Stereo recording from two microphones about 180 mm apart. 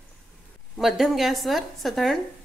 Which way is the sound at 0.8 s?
Centre (ahead or behind).